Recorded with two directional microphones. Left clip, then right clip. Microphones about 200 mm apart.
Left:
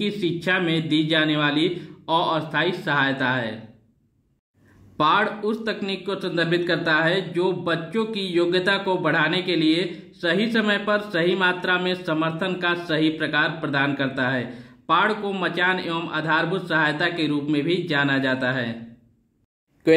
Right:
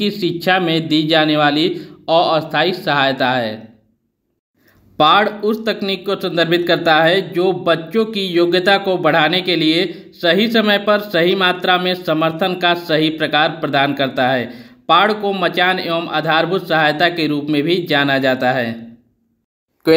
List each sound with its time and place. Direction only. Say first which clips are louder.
0.0 s speech: right 7 dB; 20° right (ahead or behind)
4.9 s speech: right 8 dB; 20° right (ahead or behind)